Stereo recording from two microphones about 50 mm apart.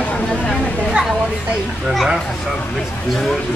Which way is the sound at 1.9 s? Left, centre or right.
Centre.